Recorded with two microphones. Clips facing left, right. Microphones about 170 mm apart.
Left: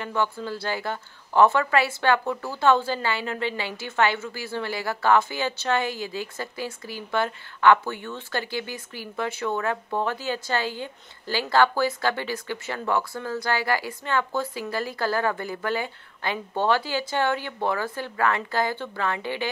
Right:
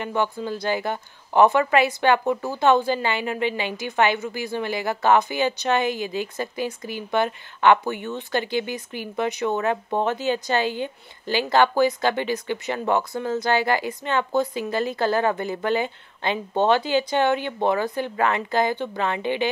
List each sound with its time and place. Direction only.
0.0 s speech: 15° right (ahead or behind)